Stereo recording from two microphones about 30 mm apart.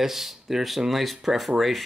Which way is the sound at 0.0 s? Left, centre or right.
Centre.